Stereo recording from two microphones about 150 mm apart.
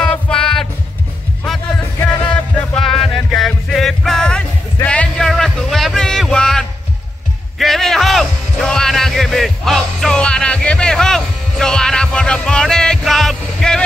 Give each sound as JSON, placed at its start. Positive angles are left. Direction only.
{"t": 0.0, "sound": "music", "side_deg": 5}
{"t": 2.0, "sound": "music", "side_deg": 5}